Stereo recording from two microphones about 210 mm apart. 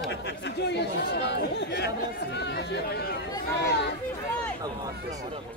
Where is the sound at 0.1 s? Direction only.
55° left (ahead or behind).